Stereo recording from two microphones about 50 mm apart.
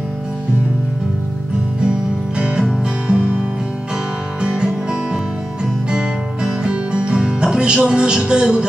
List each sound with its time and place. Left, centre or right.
2.3 s music: right
4.4 s music: centre